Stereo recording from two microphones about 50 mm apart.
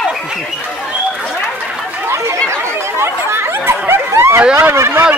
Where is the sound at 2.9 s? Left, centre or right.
Right.